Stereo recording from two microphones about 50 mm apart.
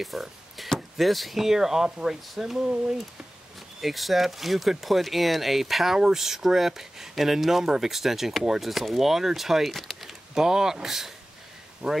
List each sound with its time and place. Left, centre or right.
0.0 s speech: centre
3.8 s speech: centre
10.0 s speech: centre
11.8 s speech: centre